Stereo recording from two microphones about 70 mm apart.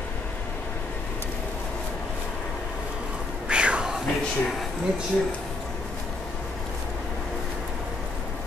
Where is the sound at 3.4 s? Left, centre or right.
Centre.